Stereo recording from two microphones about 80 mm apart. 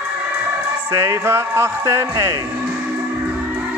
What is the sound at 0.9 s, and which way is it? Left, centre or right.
Speech, right.